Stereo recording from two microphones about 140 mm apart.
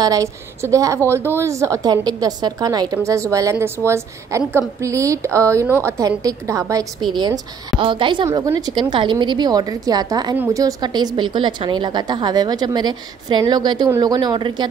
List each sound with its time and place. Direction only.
0.0 s a woman's voice: 25° right (ahead or behind)
8.3 s a woman's voice: 25° right (ahead or behind)
10.3 s a woman's voice: 15° right (ahead or behind)
10.6 s a woman's voice: 30° right (ahead or behind)